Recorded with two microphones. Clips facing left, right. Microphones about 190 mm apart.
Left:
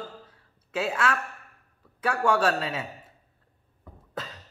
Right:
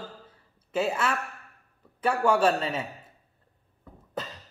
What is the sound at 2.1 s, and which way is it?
Speech, centre (ahead or behind).